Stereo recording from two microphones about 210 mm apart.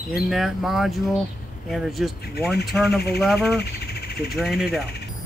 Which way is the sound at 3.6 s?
50° left (ahead or behind).